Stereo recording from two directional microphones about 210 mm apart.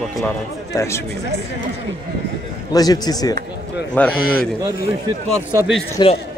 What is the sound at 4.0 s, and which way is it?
Speech, 5° left (ahead or behind).